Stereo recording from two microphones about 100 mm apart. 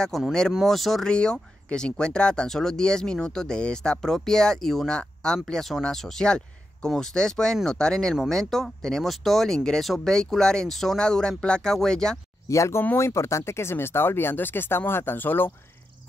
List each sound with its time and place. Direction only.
0.0 s speech: 5° left (ahead or behind)
12.4 s speech: 30° left (ahead or behind)